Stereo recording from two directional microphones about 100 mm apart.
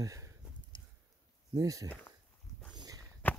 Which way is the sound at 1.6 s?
35° right (ahead or behind).